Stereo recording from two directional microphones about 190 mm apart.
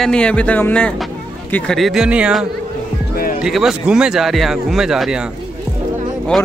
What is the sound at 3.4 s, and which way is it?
Speech, centre (ahead or behind).